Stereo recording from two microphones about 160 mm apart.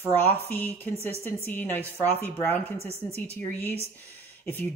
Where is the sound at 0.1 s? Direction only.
10° left (ahead or behind).